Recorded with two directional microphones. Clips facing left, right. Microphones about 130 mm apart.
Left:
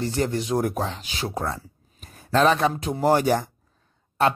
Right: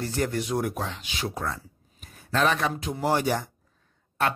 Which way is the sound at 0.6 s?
40° left (ahead or behind).